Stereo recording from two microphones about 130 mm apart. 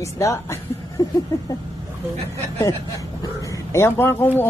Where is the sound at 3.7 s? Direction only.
20° left (ahead or behind).